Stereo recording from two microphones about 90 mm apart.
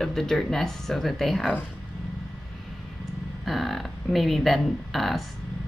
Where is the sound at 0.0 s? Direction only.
5° left (ahead or behind).